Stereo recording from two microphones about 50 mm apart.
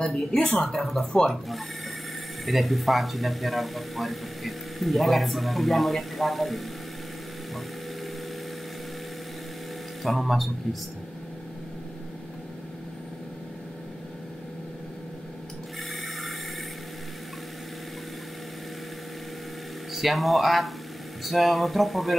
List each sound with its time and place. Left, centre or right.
0.0 s speech: centre
0.7 s speech: centre
2.4 s speech: centre
10.0 s speech: centre
19.9 s speech: centre